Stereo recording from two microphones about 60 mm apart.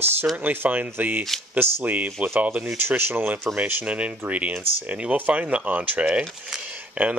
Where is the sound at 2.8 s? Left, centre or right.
Right.